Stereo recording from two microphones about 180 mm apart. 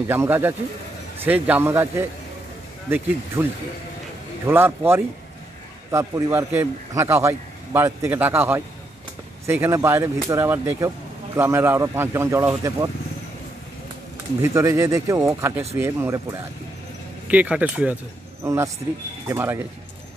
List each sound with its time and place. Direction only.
0.1 s a man's voice: 10° right (ahead or behind)
3.4 s a man's voice: 10° right (ahead or behind)
14.4 s a man's voice: 15° right (ahead or behind)